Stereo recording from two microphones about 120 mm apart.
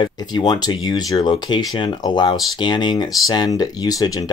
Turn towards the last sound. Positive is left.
turn(degrees=35)  # may be behind; listen again after turning